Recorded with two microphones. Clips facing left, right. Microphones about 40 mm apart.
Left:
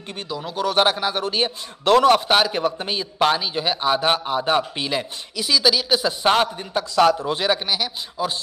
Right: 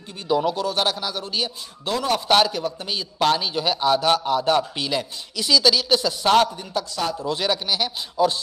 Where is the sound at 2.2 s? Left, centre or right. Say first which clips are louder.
Right 1 dB; centre.